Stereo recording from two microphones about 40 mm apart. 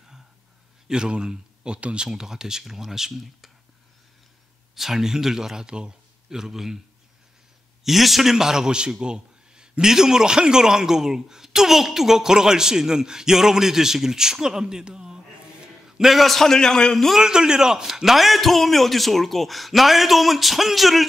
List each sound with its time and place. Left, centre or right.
0.8 s speech: right
2.0 s speech: centre
4.7 s a man's voice: centre
6.4 s speech: centre
7.8 s a man's voice: centre
16.1 s a man's voice: centre
16.5 s a man's voice: centre
17.2 s a man's voice: centre